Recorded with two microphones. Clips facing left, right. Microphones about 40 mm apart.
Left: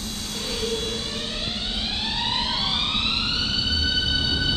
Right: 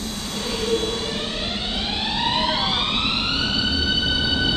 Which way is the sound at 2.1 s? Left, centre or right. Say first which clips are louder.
Right 6 dB; centre.